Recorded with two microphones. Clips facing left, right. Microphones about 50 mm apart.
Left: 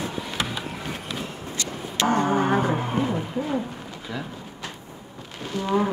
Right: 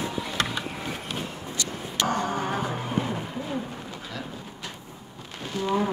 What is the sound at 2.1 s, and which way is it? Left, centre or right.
Music, left.